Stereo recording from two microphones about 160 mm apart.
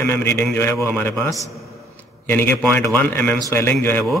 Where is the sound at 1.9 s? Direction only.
10° left (ahead or behind).